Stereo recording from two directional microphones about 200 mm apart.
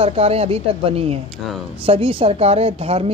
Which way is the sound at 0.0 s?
30° right (ahead or behind).